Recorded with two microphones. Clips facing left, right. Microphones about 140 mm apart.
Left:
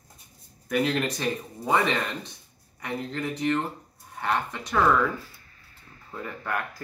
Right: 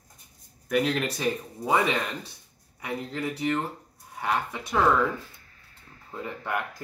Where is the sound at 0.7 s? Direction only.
Centre (ahead or behind).